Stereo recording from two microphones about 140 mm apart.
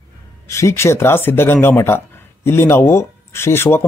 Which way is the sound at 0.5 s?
20° left (ahead or behind).